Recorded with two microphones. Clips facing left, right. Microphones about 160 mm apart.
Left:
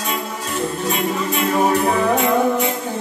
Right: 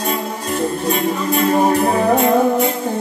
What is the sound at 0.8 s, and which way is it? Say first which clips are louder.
Music: right 3 dB; 40° right (ahead or behind).